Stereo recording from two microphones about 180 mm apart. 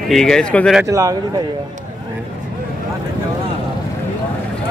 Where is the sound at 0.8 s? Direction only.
20° right (ahead or behind).